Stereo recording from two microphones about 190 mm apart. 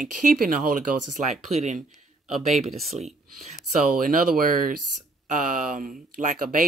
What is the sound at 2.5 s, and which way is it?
Speech, centre (ahead or behind).